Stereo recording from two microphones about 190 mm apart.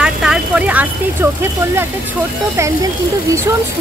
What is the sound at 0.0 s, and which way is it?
Vehicle, 5° right (ahead or behind).